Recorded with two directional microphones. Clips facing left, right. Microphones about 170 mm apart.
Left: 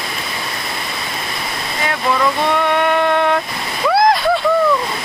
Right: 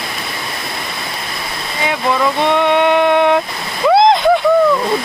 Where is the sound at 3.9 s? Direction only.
20° right (ahead or behind).